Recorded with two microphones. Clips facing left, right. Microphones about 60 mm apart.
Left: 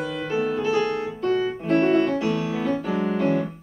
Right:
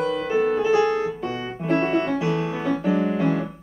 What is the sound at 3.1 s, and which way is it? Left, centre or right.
Piano, centre.